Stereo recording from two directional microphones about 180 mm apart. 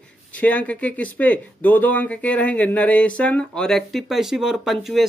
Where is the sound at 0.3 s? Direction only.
10° left (ahead or behind).